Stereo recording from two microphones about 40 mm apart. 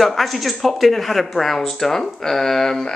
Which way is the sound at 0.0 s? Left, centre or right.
Centre.